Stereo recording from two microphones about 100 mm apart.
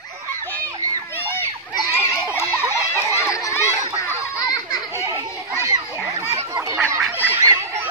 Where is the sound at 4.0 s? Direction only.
35° left (ahead or behind).